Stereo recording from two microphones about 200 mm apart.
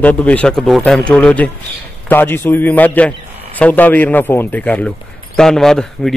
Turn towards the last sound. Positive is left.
turn(degrees=0)  # may be behind; listen again after turning